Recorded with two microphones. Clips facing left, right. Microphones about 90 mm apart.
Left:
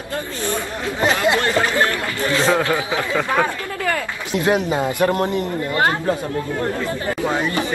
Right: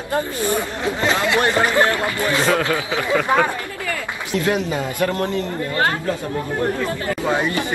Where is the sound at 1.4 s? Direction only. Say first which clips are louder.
Right 2 dB; 20° right (ahead or behind).